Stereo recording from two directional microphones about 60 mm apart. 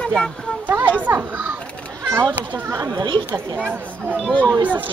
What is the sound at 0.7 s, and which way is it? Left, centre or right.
Speech, right.